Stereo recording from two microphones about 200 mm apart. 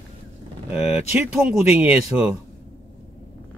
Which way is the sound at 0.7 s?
10° right (ahead or behind).